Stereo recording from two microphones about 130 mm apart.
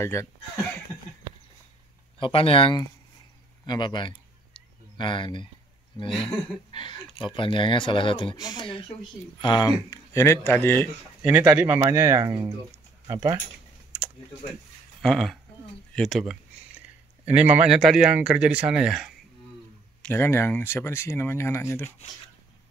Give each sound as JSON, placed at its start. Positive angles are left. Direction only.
{"t": 0.0, "sound": "speech", "side_deg": 20}
{"t": 2.1, "sound": "speech", "side_deg": 45}
{"t": 4.6, "sound": "a sound", "side_deg": 40}
{"t": 6.0, "sound": "speech", "side_deg": 0}
{"t": 6.7, "sound": "speech", "side_deg": 40}
{"t": 11.2, "sound": "speech", "side_deg": -10}
{"t": 12.2, "sound": "speech", "side_deg": -35}
{"t": 15.0, "sound": "speech", "side_deg": 5}
{"t": 17.3, "sound": "speech", "side_deg": -10}
{"t": 20.0, "sound": "speech", "side_deg": 15}